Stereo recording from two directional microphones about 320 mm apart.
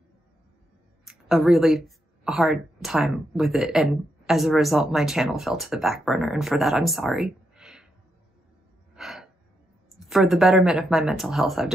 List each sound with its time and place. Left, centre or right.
1.0 s speech: centre
8.9 s gasp: centre
9.9 s speech: centre